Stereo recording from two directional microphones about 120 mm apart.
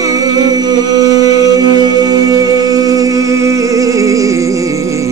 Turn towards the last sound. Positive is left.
turn(degrees=-25)  # may be behind; listen again after turning